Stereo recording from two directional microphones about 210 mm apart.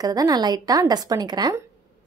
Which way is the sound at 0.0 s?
20° right (ahead or behind).